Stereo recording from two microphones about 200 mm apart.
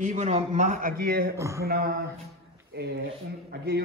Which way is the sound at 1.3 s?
15° right (ahead or behind).